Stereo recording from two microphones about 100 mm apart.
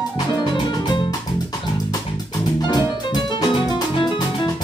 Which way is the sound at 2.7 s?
50° left (ahead or behind).